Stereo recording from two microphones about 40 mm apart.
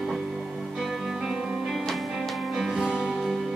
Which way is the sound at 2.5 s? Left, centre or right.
Centre.